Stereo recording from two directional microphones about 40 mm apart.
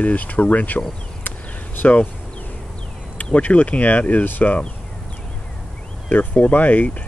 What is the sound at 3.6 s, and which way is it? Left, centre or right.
Speech, left.